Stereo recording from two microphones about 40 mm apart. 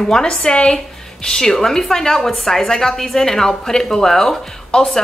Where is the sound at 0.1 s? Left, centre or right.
Centre.